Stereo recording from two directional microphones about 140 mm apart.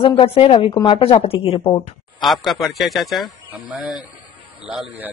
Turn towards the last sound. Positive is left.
turn(degrees=-10)  # may be behind; listen again after turning